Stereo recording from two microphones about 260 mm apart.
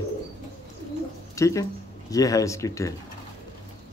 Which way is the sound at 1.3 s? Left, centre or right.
Centre.